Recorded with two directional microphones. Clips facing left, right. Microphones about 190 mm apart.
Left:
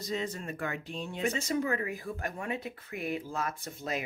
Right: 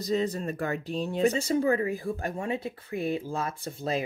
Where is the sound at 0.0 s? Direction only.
35° right (ahead or behind).